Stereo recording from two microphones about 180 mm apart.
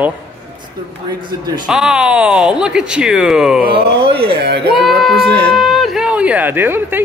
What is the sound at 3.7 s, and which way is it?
Speech, 65° right (ahead or behind).